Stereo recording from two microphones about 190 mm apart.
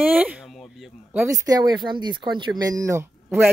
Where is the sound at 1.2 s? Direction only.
20° right (ahead or behind).